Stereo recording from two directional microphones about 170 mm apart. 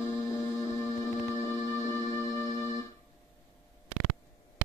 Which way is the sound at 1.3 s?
15° left (ahead or behind).